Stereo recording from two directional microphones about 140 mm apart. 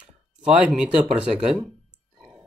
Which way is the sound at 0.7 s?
5° right (ahead or behind).